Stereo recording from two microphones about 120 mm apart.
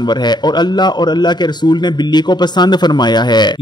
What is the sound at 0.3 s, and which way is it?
A man's voice, 35° left (ahead or behind).